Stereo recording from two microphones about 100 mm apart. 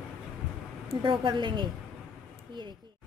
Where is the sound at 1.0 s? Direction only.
55° right (ahead or behind).